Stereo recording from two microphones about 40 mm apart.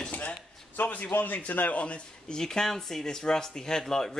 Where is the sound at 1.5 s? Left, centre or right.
Left.